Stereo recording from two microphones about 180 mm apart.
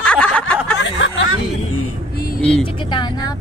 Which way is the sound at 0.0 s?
5° left (ahead or behind).